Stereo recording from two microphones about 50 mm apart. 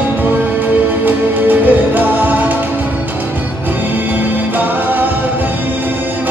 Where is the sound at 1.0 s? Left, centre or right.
Right.